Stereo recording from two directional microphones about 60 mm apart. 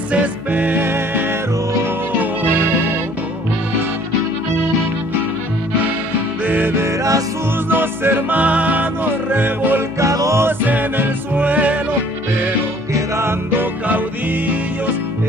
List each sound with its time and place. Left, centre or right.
0.1 s music: right
6.4 s music: right
6.8 s music: right
7.7 s music: right
8.4 s music: right
9.9 s music: right
10.4 s music: right
12.9 s music: right